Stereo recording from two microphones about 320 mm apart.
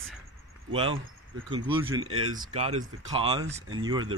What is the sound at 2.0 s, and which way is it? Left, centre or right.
Speech, right.